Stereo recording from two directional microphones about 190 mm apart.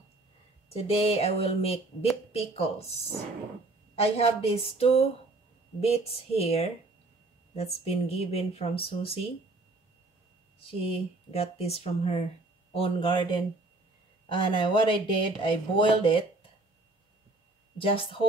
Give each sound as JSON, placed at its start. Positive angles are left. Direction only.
{"t": 0.7, "sound": "speech", "side_deg": 30}
{"t": 3.9, "sound": "speech", "side_deg": 30}
{"t": 10.6, "sound": "speech", "side_deg": 30}
{"t": 14.3, "sound": "speech", "side_deg": 25}
{"t": 17.7, "sound": "speech", "side_deg": 30}